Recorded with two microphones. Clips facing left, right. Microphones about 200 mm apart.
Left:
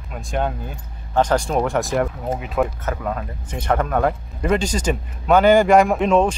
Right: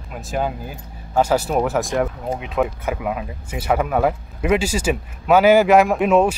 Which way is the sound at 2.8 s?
10° right (ahead or behind).